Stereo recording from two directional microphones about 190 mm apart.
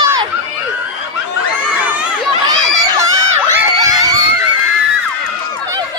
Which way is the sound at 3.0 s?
15° right (ahead or behind).